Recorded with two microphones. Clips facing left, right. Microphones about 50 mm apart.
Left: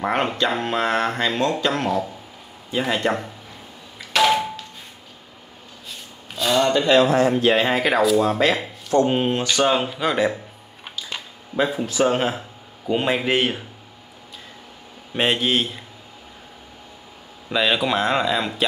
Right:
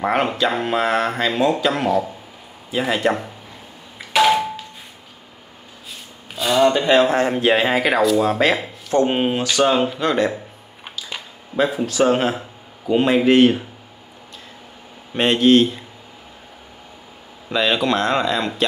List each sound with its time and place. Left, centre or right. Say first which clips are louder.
0.0 s speech: right 2 dB; centre
4.1 s a sound: right 2 dB; centre
6.3 s speech: right 3 dB; centre
6.9 s speech: even; right
7.5 s speech: right 1 dB; centre
8.9 s speech: right 1 dB; right
9.4 s speech: right 2 dB; centre
15.1 s speech: right 6 dB; centre
17.5 s speech: right 2 dB; centre